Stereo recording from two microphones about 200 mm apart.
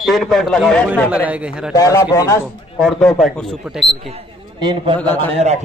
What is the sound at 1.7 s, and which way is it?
Speech, 15° left (ahead or behind).